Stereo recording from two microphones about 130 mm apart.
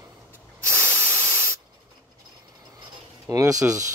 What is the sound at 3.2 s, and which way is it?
Speech, 25° right (ahead or behind).